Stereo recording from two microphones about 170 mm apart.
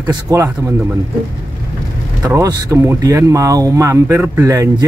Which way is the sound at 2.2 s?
15° right (ahead or behind).